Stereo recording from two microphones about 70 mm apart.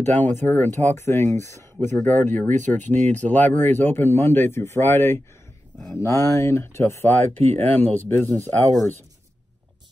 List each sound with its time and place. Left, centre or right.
0.0 s speech: left
2.0 s speech: left
5.9 s speech: left